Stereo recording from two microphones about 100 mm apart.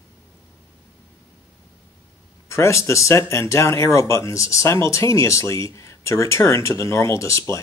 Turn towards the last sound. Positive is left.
turn(degrees=30)  # may be behind; listen again after turning